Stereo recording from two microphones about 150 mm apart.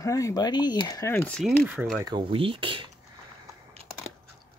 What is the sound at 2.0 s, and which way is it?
Speech, 30° right (ahead or behind).